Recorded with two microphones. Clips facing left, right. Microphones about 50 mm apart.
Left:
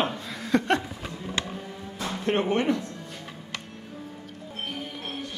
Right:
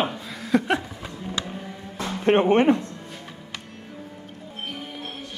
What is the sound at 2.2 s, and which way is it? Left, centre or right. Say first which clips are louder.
Speech: right 7 dB; right.